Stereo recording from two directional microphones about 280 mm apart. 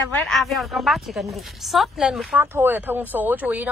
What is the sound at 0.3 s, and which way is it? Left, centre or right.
Speech, centre.